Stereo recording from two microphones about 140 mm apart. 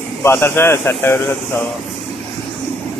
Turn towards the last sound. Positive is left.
turn(degrees=15)  # may be behind; listen again after turning